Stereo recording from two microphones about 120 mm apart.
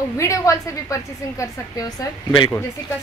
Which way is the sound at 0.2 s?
25° left (ahead or behind).